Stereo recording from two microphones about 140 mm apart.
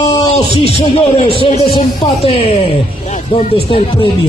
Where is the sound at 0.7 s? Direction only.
40° left (ahead or behind).